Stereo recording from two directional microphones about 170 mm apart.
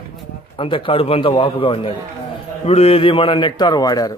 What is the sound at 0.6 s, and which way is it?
A man's voice, 30° left (ahead or behind).